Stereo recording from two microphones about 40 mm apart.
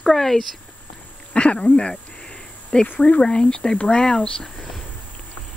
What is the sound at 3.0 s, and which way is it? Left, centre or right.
Speech, left.